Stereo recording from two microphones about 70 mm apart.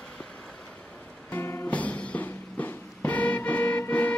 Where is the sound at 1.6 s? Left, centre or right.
Centre.